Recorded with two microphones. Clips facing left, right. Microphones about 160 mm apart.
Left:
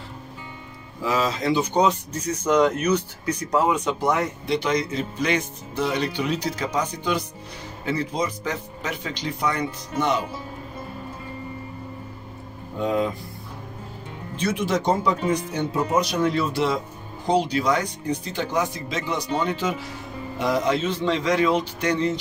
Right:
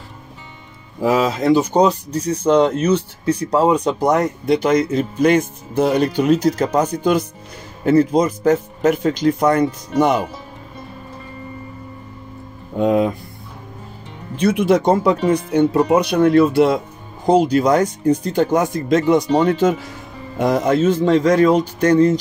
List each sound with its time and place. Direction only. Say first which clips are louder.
1.0 s speech: right 7 dB; 55° right (ahead or behind)
12.8 s speech: right 7 dB; 60° right (ahead or behind)
14.4 s speech: right 8 dB; 60° right (ahead or behind)